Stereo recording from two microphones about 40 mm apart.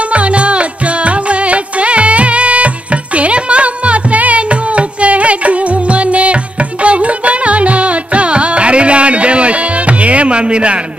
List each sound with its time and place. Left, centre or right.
0.1 s music: right